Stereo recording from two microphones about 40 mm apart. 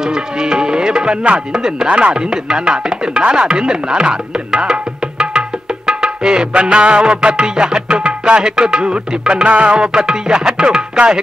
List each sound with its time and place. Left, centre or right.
0.0 s tabla: centre
1.5 s speech: centre
1.9 s chopping: right
5.9 s music: centre
8.4 s chopping: centre